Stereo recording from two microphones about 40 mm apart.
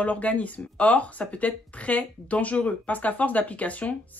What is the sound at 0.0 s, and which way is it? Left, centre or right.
Speech, left.